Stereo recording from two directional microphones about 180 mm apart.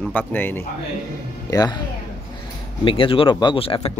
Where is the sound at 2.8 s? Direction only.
30° left (ahead or behind).